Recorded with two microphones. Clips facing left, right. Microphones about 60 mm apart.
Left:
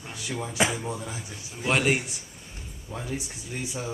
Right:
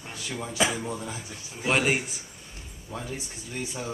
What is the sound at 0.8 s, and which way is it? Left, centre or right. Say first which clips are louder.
Speech: even; centre.